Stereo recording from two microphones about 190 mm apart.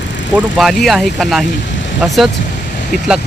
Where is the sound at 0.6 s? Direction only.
Centre (ahead or behind).